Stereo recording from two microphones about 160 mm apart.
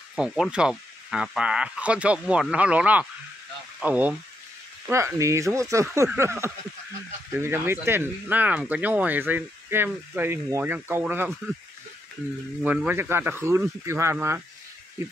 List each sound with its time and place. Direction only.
0.1 s speech: centre (ahead or behind)
12.6 s speech: 10° right (ahead or behind)